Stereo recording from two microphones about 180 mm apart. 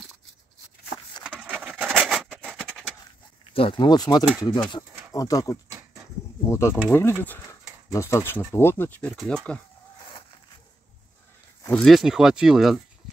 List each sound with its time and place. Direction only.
1.2 s a sound: 5° right (ahead or behind)
3.5 s speech: 30° left (ahead or behind); by 9.1 s 10° left (ahead or behind)
9.1 s speech: centre (ahead or behind)
11.7 s speech: centre (ahead or behind)